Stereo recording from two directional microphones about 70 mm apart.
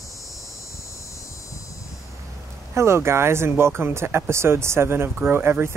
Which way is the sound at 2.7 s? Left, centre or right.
Right.